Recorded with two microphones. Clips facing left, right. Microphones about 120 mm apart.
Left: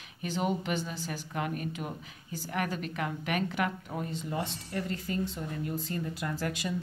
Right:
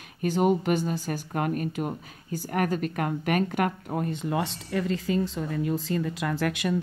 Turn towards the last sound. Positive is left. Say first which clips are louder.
# right 6 dB
turn(degrees=-70)  # may be behind; listen again after turning